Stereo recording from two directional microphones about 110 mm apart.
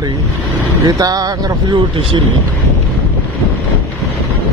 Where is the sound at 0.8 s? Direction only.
35° right (ahead or behind).